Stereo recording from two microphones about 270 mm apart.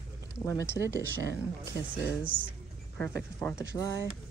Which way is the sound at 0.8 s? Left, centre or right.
Centre.